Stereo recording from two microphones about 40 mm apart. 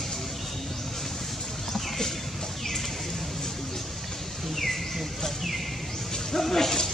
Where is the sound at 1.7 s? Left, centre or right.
Centre.